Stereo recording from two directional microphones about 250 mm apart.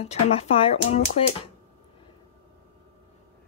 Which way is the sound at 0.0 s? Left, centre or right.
Left.